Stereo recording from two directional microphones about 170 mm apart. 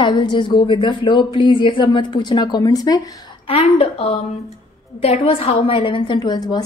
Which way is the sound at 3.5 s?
35° left (ahead or behind).